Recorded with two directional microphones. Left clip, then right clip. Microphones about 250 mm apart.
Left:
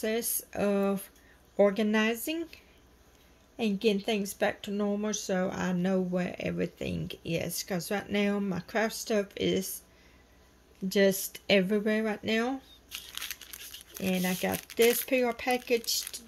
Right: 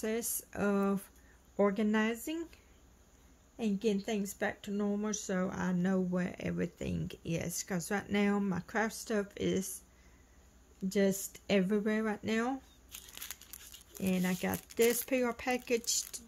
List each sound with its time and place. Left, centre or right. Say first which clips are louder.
0.0 s speech: left 5 dB; centre
10.9 s speech: left 6 dB; centre
13.5 s crumpling: left 8 dB; right
14.0 s speech: left 5 dB; centre